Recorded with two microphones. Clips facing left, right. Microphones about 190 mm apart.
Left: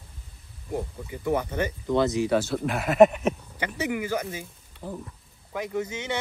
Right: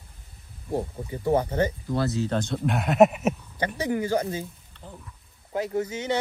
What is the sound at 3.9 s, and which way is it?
Speech, 35° right (ahead or behind).